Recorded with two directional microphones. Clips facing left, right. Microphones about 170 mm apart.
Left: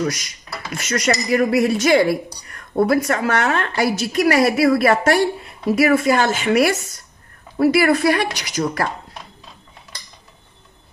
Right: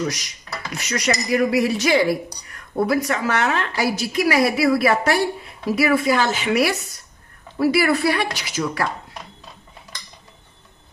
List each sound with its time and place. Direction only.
0.8 s a woman's voice: 50° left (ahead or behind)